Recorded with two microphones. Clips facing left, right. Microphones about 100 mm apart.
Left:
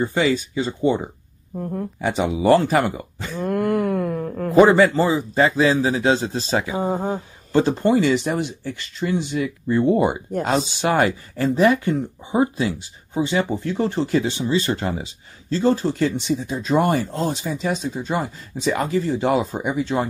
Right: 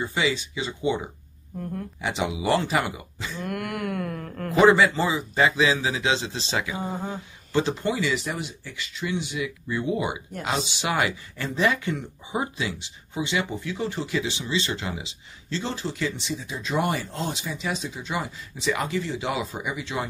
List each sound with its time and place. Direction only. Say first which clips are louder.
0.0 s speech: left 6 dB; 40° left (ahead or behind)
1.6 s speech: left 6 dB; 25° left (ahead or behind)
2.0 s speech: left 6 dB; 45° left (ahead or behind)
3.4 s wail: left 10 dB; 30° left (ahead or behind)
4.3 s a sound: left 7 dB; 10° left (ahead or behind)
4.6 s speech: left 4 dB; 45° left (ahead or behind)